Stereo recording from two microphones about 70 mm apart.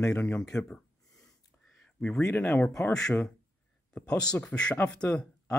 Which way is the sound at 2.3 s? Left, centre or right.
Left.